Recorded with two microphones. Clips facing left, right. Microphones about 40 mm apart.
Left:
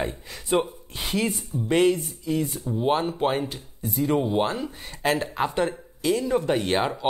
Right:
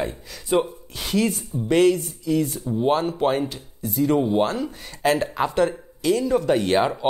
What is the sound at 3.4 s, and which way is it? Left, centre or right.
Speech, left.